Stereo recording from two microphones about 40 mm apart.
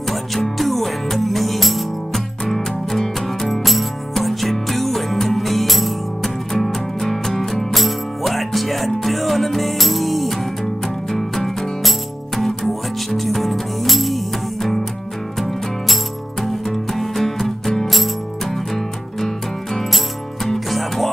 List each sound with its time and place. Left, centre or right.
0.1 s music: centre
13.1 s music: centre